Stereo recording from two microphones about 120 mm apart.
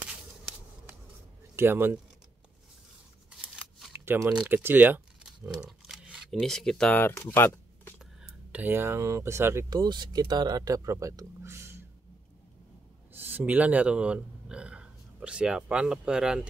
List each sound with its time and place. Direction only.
1.6 s speech: 20° right (ahead or behind)
3.3 s scissors: 5° right (ahead or behind)
3.9 s a sound: 20° right (ahead or behind)
4.3 s speech: 10° right (ahead or behind)
5.2 s crumpling: 5° right (ahead or behind)
5.7 s camera: 5° right (ahead or behind)
6.4 s speech: 5° left (ahead or behind)
8.0 s speech: 5° right (ahead or behind)
9.7 s speech: 35° right (ahead or behind); by 11.8 s 20° right (ahead or behind)
13.1 s a man's voice: 15° right (ahead or behind)